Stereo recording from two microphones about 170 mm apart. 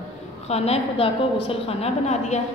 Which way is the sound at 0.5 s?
35° left (ahead or behind).